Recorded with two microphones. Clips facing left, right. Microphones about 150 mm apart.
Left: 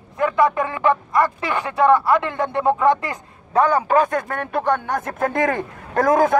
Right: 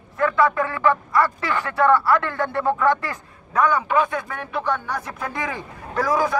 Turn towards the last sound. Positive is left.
turn(degrees=50)  # may be behind; listen again after turning